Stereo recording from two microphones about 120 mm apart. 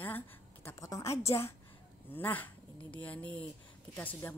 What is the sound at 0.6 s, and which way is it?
A woman's voice, 30° left (ahead or behind).